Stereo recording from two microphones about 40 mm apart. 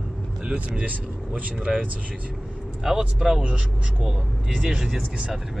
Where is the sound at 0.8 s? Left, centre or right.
Right.